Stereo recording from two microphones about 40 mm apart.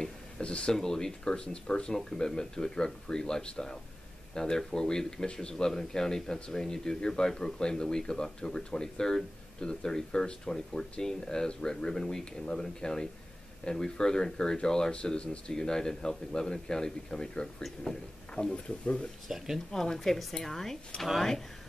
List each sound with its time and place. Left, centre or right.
0.4 s speech: left
0.7 s speech: centre
19.2 s speech: centre
19.7 s speech: centre